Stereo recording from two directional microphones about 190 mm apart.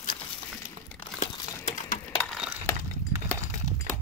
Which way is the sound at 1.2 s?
40° left (ahead or behind).